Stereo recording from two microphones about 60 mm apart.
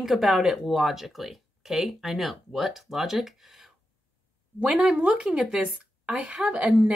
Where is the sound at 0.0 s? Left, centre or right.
Centre.